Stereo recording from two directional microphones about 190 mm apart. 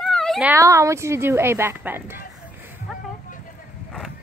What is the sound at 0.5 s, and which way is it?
Speech, 15° right (ahead or behind).